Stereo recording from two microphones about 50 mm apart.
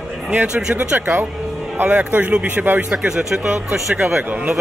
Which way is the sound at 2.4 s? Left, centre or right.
Right.